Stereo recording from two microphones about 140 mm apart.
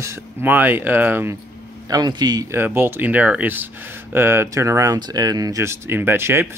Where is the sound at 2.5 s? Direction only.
15° right (ahead or behind).